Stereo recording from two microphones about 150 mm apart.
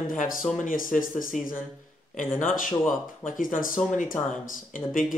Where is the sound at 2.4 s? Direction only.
65° left (ahead or behind).